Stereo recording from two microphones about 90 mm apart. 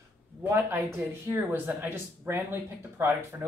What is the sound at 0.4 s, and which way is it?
Speech, 25° right (ahead or behind).